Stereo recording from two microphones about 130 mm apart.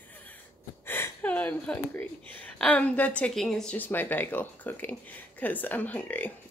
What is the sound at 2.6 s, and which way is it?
A woman's voice, 10° left (ahead or behind).